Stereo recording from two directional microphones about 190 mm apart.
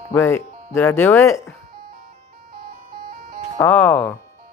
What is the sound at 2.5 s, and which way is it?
Music, 50° right (ahead or behind).